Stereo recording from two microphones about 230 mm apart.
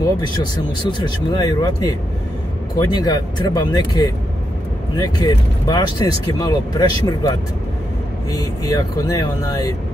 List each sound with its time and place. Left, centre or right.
0.8 s speech: centre